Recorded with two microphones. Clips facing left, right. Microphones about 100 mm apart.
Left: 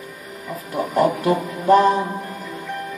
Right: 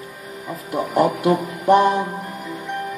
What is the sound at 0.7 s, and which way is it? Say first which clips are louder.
Speech: even; 15° right (ahead or behind).